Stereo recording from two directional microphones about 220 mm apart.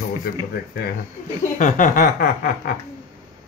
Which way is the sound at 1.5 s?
35° left (ahead or behind).